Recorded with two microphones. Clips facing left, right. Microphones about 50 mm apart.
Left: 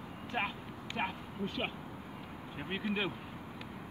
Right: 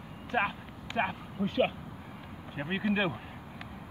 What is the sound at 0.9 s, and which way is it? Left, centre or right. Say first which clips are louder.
Speech: right 6 dB; centre.